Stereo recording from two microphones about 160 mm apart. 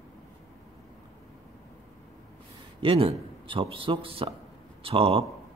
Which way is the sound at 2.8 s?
35° right (ahead or behind).